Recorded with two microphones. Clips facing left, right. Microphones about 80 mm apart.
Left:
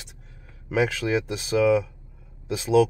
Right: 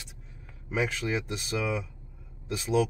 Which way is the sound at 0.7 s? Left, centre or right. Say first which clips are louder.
Left 6 dB; left.